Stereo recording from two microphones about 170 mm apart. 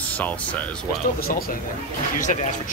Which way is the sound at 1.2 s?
60° left (ahead or behind).